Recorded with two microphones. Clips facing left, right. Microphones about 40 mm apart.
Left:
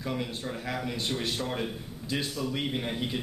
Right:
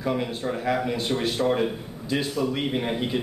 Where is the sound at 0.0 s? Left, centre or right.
Centre.